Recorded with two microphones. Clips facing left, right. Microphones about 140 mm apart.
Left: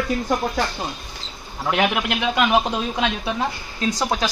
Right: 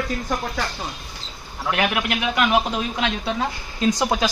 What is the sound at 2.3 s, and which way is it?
Speech, 15° left (ahead or behind).